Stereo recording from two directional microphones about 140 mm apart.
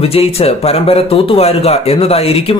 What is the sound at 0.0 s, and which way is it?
Speech, 45° left (ahead or behind).